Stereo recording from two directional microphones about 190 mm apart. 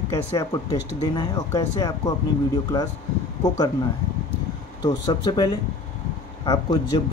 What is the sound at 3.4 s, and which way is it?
Speech, 20° left (ahead or behind).